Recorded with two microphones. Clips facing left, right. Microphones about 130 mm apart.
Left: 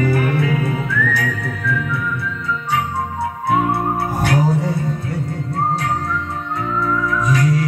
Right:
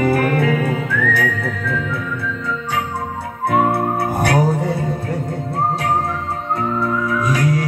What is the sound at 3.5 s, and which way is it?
Music, 55° right (ahead or behind).